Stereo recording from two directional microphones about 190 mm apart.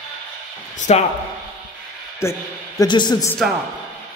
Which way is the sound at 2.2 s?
15° left (ahead or behind).